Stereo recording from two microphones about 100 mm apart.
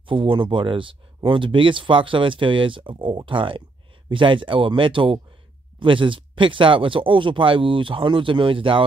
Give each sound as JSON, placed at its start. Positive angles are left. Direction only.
{"t": 0.0, "sound": "speech", "side_deg": -60}